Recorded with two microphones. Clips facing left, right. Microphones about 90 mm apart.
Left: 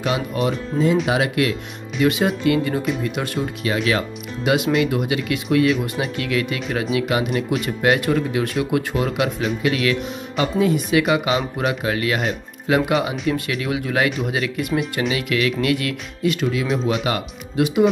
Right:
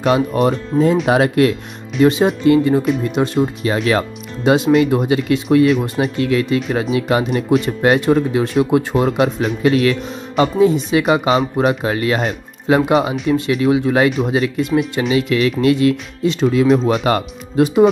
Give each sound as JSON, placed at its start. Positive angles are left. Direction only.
{"t": 0.0, "sound": "speech", "side_deg": -40}